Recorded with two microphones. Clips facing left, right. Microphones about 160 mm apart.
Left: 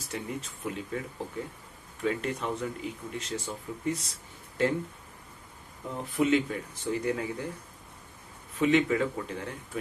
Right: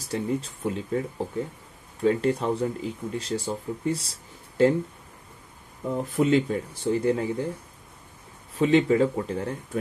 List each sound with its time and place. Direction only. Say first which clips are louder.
0.1 s speech: right 9 dB; 35° right (ahead or behind)
6.1 s speech: right 3 dB; 35° right (ahead or behind)
8.5 s speech: right 5 dB; 30° right (ahead or behind)